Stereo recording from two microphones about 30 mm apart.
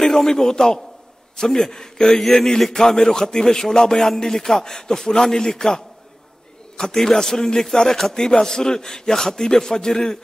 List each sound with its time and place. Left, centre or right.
0.0 s a man's voice: centre
6.8 s a man's voice: centre